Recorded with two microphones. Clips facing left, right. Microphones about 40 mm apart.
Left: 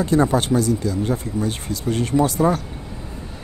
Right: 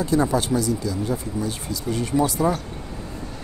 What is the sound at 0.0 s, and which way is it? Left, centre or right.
Speech, left.